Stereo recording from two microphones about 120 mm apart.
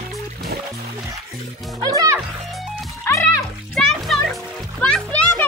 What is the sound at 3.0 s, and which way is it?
Music, 20° left (ahead or behind).